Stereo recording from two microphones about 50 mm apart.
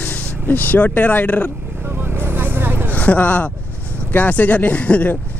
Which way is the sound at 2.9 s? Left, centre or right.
Left.